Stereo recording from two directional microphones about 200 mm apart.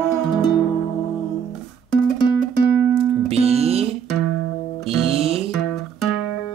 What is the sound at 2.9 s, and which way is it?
Music, 30° right (ahead or behind).